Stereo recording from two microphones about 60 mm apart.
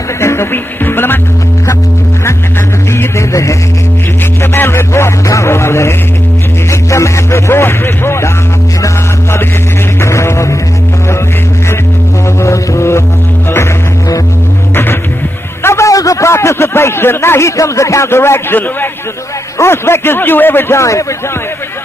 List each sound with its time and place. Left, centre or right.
0.2 s speech: left
2.9 s music: left
4.4 s music: left
10.0 s music: left
12.4 s music: left
15.6 s a sound: left
15.9 s a man's voice: left
20.7 s a man's voice: left